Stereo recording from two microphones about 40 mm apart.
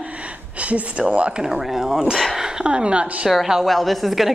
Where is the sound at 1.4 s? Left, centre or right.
Centre.